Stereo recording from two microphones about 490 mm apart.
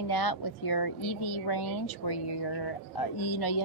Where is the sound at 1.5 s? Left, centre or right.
Left.